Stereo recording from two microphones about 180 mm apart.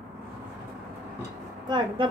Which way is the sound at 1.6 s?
25° right (ahead or behind).